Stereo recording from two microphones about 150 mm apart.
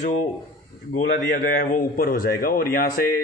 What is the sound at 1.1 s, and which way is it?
A man's voice, 80° left.